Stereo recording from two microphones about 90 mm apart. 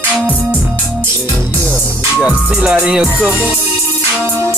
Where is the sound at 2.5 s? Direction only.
10° right (ahead or behind).